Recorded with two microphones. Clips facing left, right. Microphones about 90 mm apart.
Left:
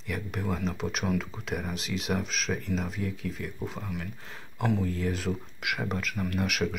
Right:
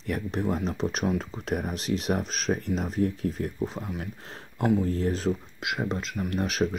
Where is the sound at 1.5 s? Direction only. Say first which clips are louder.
Right 6 dB; 45° right (ahead or behind).